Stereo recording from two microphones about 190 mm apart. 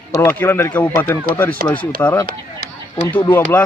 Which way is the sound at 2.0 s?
10° left (ahead or behind).